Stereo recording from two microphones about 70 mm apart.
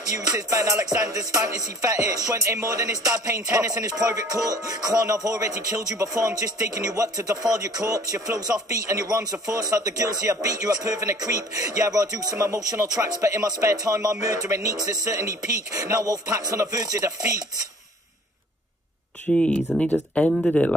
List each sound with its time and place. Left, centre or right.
0.0 s speech: right
19.3 s speech: centre